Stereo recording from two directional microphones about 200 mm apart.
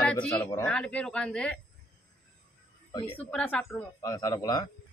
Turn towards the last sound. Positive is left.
turn(degrees=15)  # may be behind; listen again after turning